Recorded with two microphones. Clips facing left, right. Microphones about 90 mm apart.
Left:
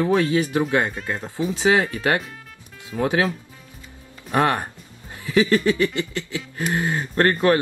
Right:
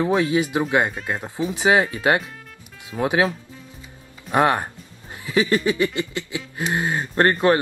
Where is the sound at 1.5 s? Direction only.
20° right (ahead or behind).